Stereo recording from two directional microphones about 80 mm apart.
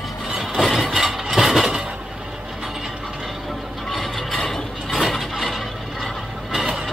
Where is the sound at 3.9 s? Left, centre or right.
Centre.